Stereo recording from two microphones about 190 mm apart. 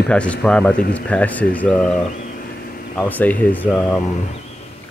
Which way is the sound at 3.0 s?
10° left (ahead or behind).